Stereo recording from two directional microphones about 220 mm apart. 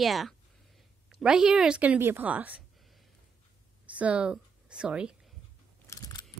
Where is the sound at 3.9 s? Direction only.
5° right (ahead or behind).